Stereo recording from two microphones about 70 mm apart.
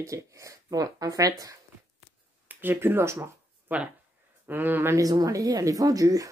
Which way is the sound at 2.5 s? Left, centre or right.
Right.